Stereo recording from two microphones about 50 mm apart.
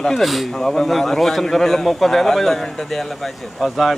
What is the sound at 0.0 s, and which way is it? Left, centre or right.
Speech, centre.